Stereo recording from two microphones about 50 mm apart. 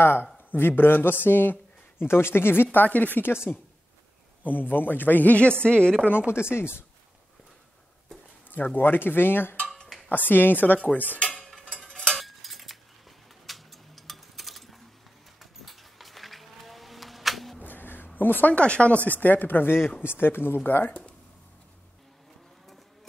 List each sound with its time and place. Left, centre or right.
0.0 s speech: left
6.3 s speech: left
8.5 s speech: left
12.2 s a sound: centre
17.6 s a sound: left
18.5 s speech: left